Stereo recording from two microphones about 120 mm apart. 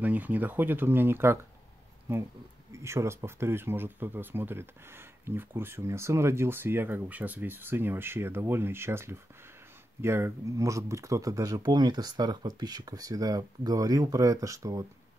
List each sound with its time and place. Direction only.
0.0 s speech: 15° right (ahead or behind)